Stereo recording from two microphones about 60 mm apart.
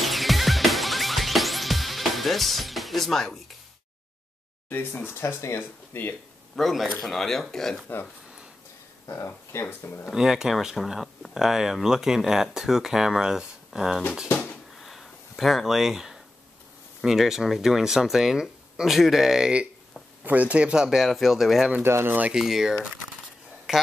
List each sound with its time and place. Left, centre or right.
0.0 s music: centre
5.2 s speech: left
5.6 s speech: left
6.5 s speech: centre
9.2 s speech: left
10.1 s speech: centre
14.8 s a sound: centre
17.0 s speech: centre
20.2 s speech: right; by 21.7 s centre
21.8 s speech: right
22.3 s speech: centre